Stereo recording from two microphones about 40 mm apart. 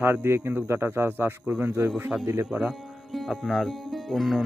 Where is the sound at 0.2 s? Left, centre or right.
Right.